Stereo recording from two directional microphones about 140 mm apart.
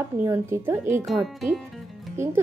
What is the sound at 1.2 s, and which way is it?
Speech, centre (ahead or behind).